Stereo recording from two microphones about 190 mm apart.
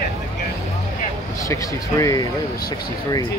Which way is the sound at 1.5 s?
15° left (ahead or behind).